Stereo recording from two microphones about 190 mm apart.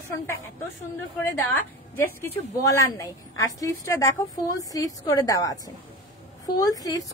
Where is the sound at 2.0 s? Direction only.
15° left (ahead or behind).